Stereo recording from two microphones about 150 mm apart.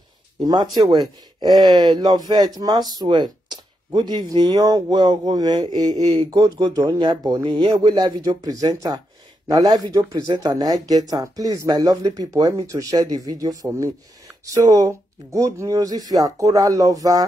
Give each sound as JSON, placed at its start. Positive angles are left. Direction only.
{"t": 0.4, "sound": "speech", "side_deg": -25}